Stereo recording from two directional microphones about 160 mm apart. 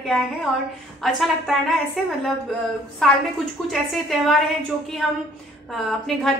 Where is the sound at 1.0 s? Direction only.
Centre (ahead or behind).